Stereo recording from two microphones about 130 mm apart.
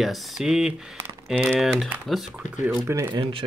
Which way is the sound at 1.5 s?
Centre (ahead or behind).